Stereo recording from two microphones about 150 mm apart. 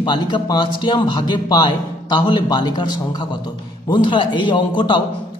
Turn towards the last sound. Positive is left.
turn(degrees=30)  # may be behind; listen again after turning